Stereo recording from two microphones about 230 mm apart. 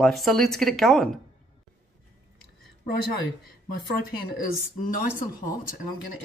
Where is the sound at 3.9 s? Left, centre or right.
Left.